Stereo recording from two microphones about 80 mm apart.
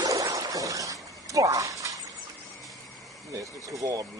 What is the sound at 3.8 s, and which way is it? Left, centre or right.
Speech, right.